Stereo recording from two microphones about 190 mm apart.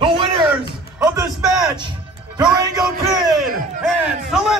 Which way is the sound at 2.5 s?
20° right (ahead or behind).